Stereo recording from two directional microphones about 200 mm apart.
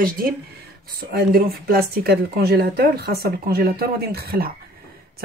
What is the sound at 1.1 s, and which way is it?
Speech, 50° right (ahead or behind).